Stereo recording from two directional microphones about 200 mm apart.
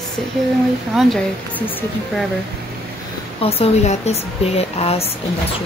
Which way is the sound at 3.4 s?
30° left (ahead or behind).